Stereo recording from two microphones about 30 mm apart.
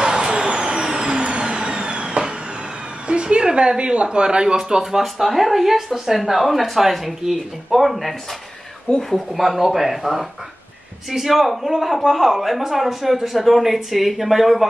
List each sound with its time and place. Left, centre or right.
0.0 s vehicle: right
3.1 s speech: right
5.0 s a man's voice: centre